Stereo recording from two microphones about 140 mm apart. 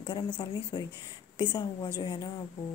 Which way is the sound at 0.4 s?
35° left (ahead or behind).